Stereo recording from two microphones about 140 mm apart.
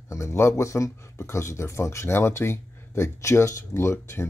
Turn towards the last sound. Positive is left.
turn(degrees=20)  # may be behind; listen again after turning